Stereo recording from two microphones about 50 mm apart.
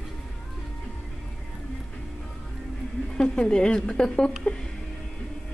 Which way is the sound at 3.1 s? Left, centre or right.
Centre.